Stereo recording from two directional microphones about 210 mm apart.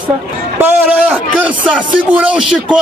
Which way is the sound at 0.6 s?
5° right (ahead or behind).